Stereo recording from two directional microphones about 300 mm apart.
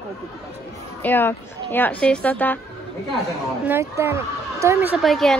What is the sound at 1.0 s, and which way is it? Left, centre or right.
Speech, centre.